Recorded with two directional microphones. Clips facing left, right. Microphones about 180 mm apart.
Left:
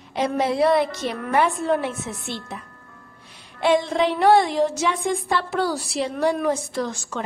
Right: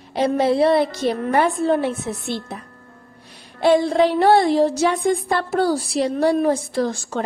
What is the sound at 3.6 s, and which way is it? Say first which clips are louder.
A woman's voice: right 4 dB; 35° right (ahead or behind).